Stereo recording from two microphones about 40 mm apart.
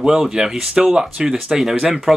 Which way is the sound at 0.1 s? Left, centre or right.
Centre.